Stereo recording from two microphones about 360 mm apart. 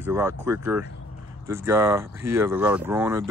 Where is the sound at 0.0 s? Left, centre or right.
Centre.